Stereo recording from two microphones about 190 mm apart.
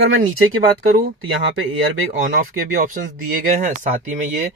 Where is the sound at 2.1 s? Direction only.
45° right (ahead or behind).